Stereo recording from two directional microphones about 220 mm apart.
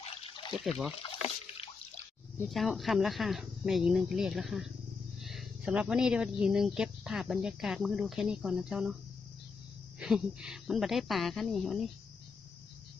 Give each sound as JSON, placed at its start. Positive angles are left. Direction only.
{"t": 0.0, "sound": "water", "side_deg": 25}
{"t": 0.7, "sound": "speech", "side_deg": 0}
{"t": 2.4, "sound": "speech", "side_deg": 0}
{"t": 9.9, "sound": "speech", "side_deg": -5}